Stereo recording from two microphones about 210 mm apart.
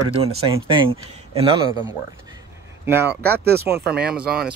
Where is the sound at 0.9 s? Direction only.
25° right (ahead or behind).